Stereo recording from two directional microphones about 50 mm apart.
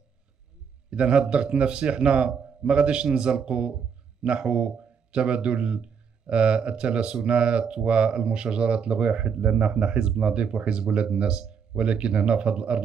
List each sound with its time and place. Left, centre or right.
0.8 s a man's voice: right